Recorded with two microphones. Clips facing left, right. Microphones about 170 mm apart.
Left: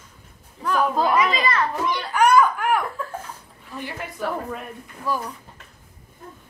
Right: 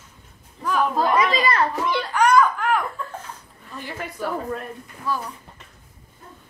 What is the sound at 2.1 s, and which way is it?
Baby laughter, 5° left (ahead or behind).